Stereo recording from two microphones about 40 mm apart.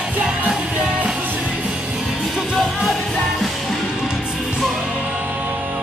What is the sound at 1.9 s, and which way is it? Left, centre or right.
Music, centre.